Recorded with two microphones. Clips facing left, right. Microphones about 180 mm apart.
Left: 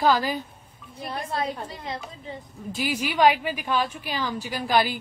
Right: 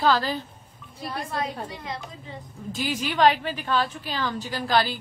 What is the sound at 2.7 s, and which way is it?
A woman's voice, 10° left (ahead or behind).